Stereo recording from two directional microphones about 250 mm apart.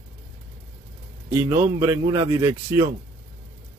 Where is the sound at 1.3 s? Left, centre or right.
Centre.